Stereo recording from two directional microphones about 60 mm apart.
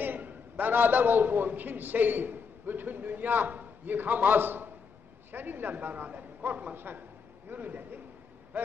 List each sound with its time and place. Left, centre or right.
0.0 s a man's voice: right